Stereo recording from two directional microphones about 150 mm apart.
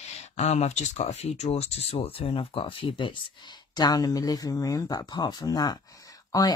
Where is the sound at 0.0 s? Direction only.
45° left (ahead or behind).